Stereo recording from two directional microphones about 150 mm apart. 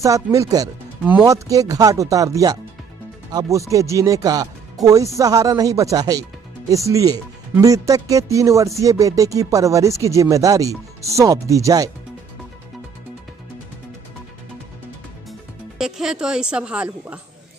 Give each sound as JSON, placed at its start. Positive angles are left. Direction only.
{"t": 0.0, "sound": "speech", "side_deg": -20}
{"t": 15.8, "sound": "a woman's voice", "side_deg": -5}